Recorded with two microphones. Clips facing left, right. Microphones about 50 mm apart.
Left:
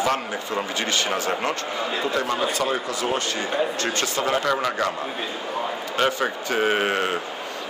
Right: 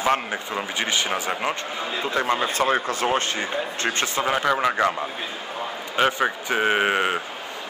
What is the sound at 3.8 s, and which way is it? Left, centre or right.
A man's voice, right.